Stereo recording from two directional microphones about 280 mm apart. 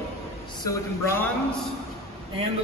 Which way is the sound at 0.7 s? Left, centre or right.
Centre.